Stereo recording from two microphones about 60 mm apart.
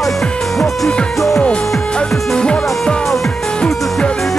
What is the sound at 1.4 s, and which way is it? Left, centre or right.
Music, centre.